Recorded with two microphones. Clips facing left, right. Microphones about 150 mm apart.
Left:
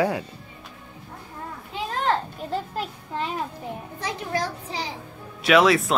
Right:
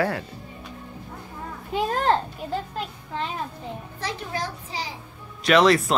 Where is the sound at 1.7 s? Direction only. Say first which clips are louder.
Right 4 dB; 45° right (ahead or behind).